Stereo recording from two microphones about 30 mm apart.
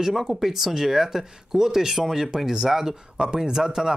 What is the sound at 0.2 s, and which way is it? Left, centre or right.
Speech, centre.